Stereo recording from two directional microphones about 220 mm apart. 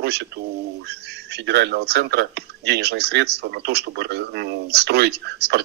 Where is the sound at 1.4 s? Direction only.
50° right (ahead or behind).